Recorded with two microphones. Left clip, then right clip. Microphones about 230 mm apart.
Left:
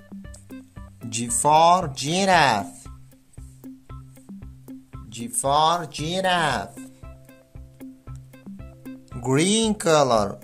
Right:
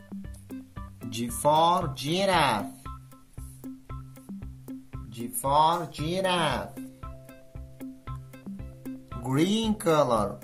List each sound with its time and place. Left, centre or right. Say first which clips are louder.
0.1 s music: even; centre
1.1 s speech: left 5 dB; left
3.6 s music: even; centre
5.4 s speech: left 3 dB; left
6.7 s music: even; centre
9.2 s speech: left 6 dB; left